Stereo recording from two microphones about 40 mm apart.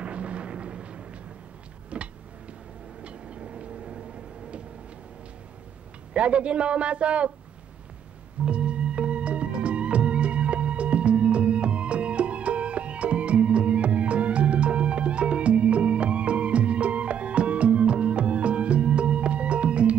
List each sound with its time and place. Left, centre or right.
0.0 s a sound: right
3.0 s vehicle: right
6.1 s a man's voice: right
8.5 s music: right